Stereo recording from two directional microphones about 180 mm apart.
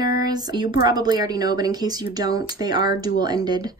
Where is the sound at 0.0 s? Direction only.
20° right (ahead or behind).